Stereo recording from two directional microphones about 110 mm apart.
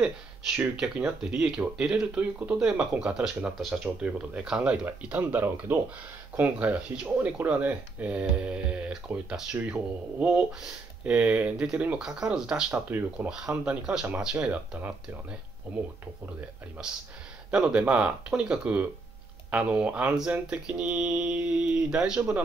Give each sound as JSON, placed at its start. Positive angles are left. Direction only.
{"t": 0.7, "sound": "speech", "side_deg": -10}
{"t": 12.7, "sound": "speech", "side_deg": -20}
{"t": 17.5, "sound": "speech", "side_deg": -10}